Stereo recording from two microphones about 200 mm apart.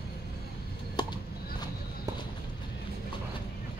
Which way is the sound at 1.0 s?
20° left (ahead or behind).